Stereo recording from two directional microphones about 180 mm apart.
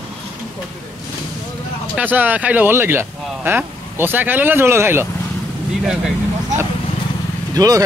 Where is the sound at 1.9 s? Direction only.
10° right (ahead or behind).